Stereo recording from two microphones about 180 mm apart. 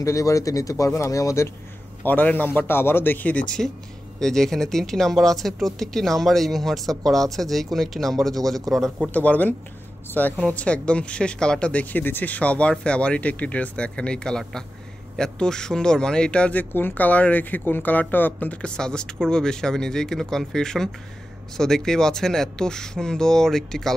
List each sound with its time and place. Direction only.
0.0 s speech: 15° left (ahead or behind); by 23.9 s centre (ahead or behind)